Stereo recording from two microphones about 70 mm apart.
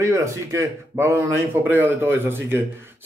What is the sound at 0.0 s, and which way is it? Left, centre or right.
Speech, right.